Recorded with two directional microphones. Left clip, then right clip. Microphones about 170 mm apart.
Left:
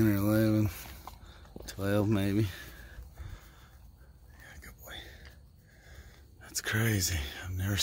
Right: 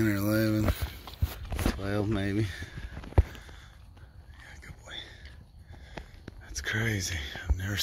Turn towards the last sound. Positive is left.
turn(degrees=40)  # may be behind; listen again after turning